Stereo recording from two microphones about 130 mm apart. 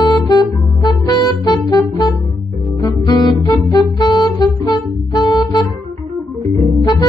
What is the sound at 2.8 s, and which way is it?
Music, 30° left (ahead or behind).